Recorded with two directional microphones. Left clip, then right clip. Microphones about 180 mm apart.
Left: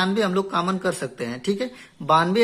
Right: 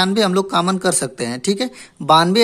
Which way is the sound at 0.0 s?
40° right (ahead or behind).